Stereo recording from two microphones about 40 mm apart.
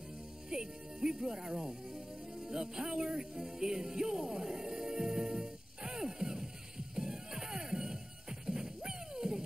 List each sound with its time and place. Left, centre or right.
0.5 s speech: centre
7.0 s music: centre